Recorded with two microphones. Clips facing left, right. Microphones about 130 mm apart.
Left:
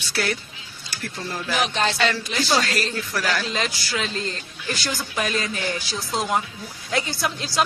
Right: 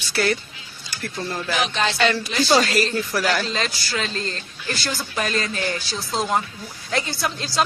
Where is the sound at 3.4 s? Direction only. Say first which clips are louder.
Even; 10° left (ahead or behind).